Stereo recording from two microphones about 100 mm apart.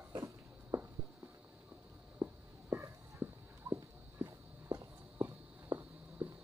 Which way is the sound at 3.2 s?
25° right (ahead or behind).